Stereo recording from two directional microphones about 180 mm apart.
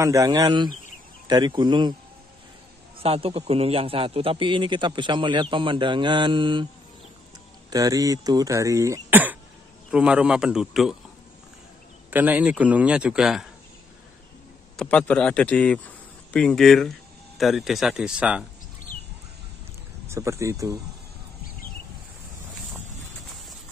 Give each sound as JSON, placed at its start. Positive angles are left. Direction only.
{"t": 0.0, "sound": "a man's voice", "side_deg": -15}
{"t": 3.0, "sound": "a man's voice", "side_deg": -30}
{"t": 7.7, "sound": "a man's voice", "side_deg": -20}
{"t": 12.1, "sound": "speech", "side_deg": -10}
{"t": 14.8, "sound": "a man's voice", "side_deg": 5}
{"t": 20.1, "sound": "speech", "side_deg": -15}